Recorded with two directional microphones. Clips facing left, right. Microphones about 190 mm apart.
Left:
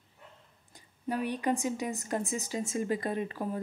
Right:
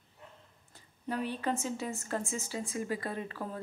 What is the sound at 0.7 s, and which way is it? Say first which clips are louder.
A woman's voice: left 2 dB; 15° left (ahead or behind).